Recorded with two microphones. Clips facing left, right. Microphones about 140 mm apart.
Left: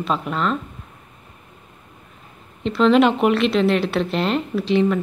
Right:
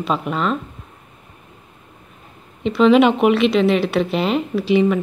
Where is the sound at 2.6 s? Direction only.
5° right (ahead or behind).